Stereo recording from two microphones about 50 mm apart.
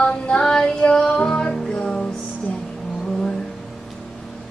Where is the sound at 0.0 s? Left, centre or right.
Centre.